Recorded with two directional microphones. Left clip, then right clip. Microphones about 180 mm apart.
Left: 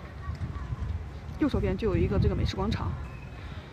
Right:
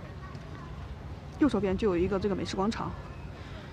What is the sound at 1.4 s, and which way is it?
Speech, 5° right (ahead or behind).